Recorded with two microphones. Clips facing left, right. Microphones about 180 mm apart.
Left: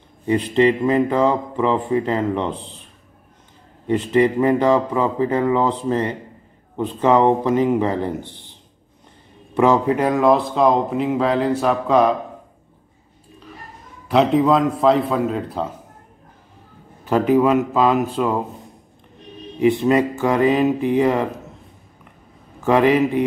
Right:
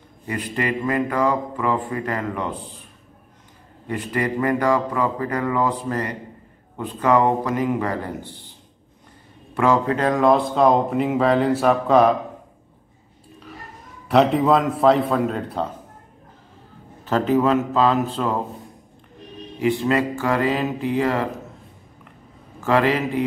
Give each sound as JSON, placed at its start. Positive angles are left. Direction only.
{"t": 0.3, "sound": "speech", "side_deg": 25}
{"t": 3.8, "sound": "speech", "side_deg": 25}
{"t": 9.6, "sound": "speech", "side_deg": 15}
{"t": 14.0, "sound": "speech", "side_deg": 0}
{"t": 17.0, "sound": "speech", "side_deg": 15}
{"t": 19.6, "sound": "speech", "side_deg": 20}
{"t": 22.6, "sound": "speech", "side_deg": 15}